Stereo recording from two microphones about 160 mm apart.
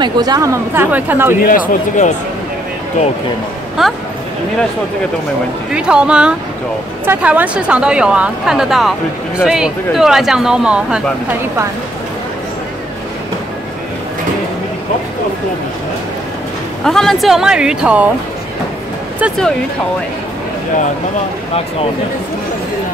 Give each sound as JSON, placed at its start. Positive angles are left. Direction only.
{"t": 0.0, "sound": "speech", "side_deg": -25}
{"t": 1.4, "sound": "speech", "side_deg": 55}
{"t": 3.8, "sound": "speech", "side_deg": 0}
{"t": 5.7, "sound": "speech", "side_deg": -5}
{"t": 16.8, "sound": "speech", "side_deg": 0}